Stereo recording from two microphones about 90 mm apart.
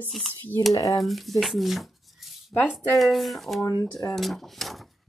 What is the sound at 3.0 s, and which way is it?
Speech, centre (ahead or behind).